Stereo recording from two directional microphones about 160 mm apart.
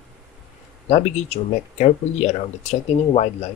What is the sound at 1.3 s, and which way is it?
Speech, 40° left (ahead or behind).